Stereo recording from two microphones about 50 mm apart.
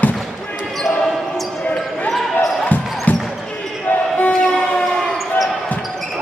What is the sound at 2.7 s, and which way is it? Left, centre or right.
Basketball bounce, left.